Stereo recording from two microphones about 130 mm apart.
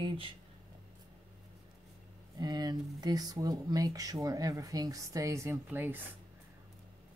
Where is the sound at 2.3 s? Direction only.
30° right (ahead or behind); by 6.0 s 15° right (ahead or behind).